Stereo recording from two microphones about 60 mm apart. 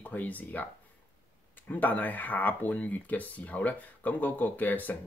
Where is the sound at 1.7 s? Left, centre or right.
Left.